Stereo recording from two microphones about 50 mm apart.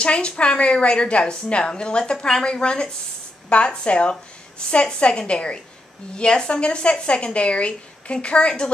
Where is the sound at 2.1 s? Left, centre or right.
Centre.